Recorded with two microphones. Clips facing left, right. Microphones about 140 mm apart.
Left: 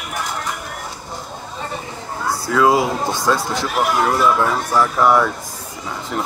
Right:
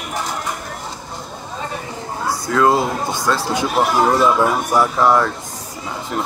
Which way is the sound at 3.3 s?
10° right (ahead or behind).